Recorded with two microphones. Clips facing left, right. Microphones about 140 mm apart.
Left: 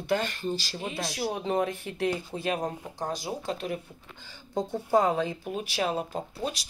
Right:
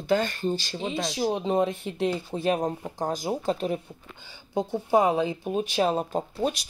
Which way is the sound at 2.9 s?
45° right (ahead or behind).